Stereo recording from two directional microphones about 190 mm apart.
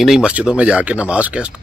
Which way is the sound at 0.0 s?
5° right (ahead or behind).